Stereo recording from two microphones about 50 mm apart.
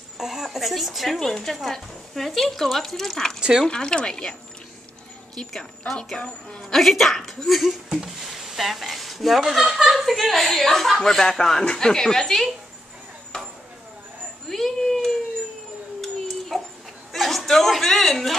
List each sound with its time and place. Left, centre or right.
0.2 s speech: centre
3.3 s speech: centre
3.6 s speech: centre
6.1 s a woman's voice: centre
6.7 s speech: centre
13.3 s chopping: centre
14.5 s a sound: centre
16.0 s dog: centre
17.1 s a man's voice: centre